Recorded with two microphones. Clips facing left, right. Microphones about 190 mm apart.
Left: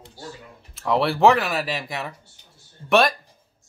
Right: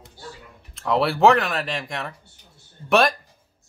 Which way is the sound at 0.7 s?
Centre (ahead or behind).